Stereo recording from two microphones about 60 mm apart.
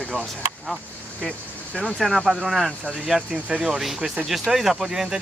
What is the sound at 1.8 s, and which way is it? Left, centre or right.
Speech, centre.